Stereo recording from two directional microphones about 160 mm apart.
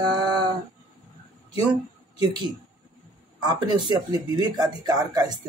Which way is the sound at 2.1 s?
25° right (ahead or behind).